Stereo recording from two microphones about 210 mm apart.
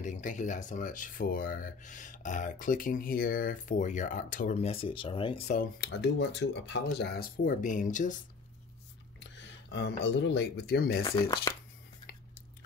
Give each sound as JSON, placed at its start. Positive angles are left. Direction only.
{"t": 0.0, "sound": "speech", "side_deg": 35}
{"t": 5.5, "sound": "speech", "side_deg": 40}
{"t": 5.9, "sound": "speech", "side_deg": 55}
{"t": 9.7, "sound": "speech", "side_deg": 55}
{"t": 11.5, "sound": "a sound", "side_deg": 15}